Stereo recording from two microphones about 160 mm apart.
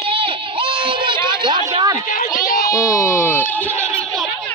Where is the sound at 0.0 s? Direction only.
35° right (ahead or behind).